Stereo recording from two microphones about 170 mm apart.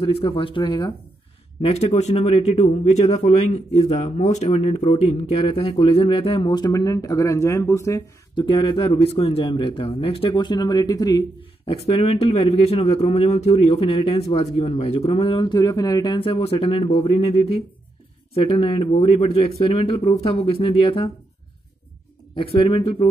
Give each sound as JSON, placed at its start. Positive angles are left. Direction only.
{"t": 0.0, "sound": "speech", "side_deg": 30}
{"t": 1.6, "sound": "speech", "side_deg": 35}
{"t": 8.5, "sound": "speech", "side_deg": 30}
{"t": 11.7, "sound": "speech", "side_deg": 35}
{"t": 22.3, "sound": "speech", "side_deg": 30}